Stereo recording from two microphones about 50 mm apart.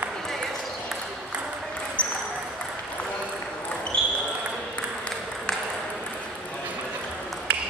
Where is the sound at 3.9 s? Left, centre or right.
Left.